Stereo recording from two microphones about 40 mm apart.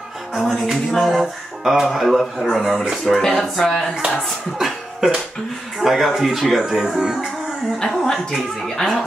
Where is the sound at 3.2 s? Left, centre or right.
Centre.